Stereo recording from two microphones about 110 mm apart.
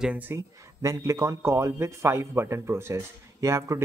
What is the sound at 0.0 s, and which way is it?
Speech, 15° right (ahead or behind).